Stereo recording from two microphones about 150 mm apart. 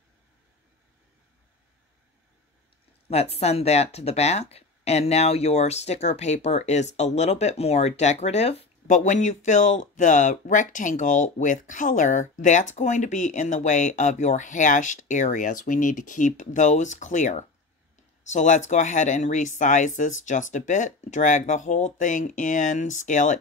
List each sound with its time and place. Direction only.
3.1 s speech: 45° left (ahead or behind)